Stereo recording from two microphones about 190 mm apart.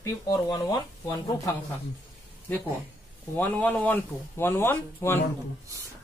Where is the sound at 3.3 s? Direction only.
10° left (ahead or behind).